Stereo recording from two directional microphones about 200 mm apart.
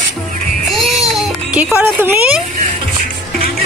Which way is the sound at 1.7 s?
10° right (ahead or behind).